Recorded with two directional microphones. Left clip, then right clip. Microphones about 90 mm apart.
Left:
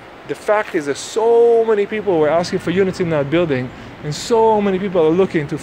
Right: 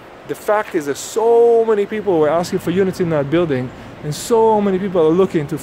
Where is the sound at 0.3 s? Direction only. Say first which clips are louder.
Even; 35° right (ahead or behind).